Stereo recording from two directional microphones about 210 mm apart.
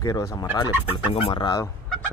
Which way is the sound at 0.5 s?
25° left (ahead or behind).